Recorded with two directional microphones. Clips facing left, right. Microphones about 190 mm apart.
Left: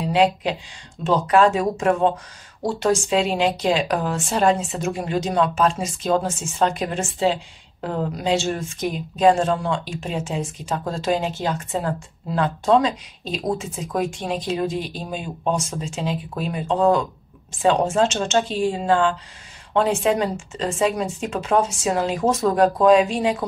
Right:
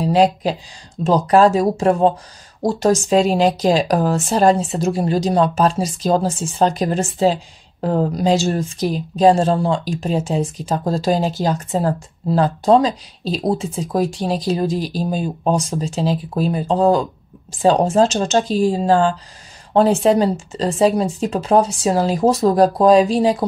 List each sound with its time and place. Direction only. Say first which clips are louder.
0.0 s speech: right 4 dB; 40° right (ahead or behind)